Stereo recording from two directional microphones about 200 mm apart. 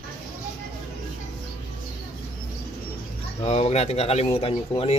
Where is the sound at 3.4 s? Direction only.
30° left (ahead or behind).